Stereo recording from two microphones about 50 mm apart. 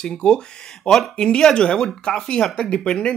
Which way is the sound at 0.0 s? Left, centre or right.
Centre.